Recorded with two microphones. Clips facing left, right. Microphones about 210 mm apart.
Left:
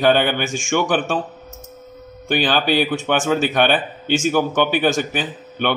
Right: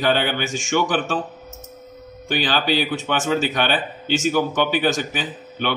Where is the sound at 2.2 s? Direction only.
55° left (ahead or behind).